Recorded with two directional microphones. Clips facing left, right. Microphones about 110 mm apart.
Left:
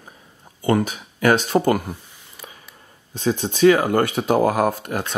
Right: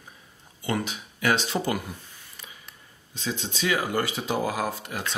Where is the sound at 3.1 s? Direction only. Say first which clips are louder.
Left 10 dB; 50° left (ahead or behind).